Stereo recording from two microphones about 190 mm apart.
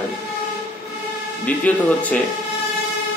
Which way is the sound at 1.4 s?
10° left (ahead or behind).